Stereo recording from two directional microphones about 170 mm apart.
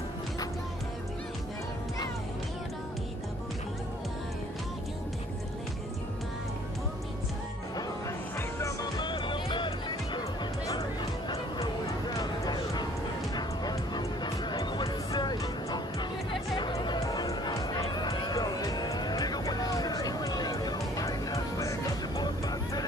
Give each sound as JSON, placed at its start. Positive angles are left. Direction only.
{"t": 8.4, "sound": "music", "side_deg": 15}